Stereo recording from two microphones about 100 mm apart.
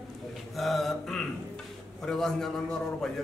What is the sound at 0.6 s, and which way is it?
A man's voice, centre (ahead or behind).